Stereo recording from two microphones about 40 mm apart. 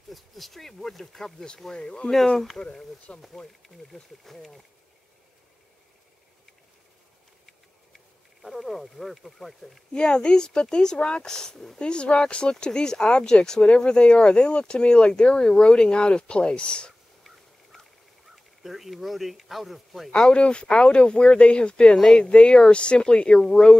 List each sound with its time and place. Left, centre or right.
0.1 s speech: centre
3.9 s speech: centre
7.4 s a sound: centre
9.9 s speech: left
11.8 s speech: left
18.3 s a man's voice: centre
20.2 s speech: left
21.9 s speech: centre
22.3 s speech: left